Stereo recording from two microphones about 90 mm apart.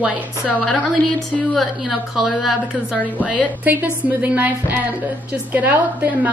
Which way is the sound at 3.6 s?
20° right (ahead or behind).